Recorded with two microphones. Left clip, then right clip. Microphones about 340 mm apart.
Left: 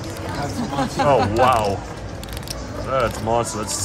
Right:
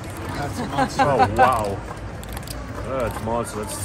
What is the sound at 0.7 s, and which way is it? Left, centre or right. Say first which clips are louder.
Speech: even; right.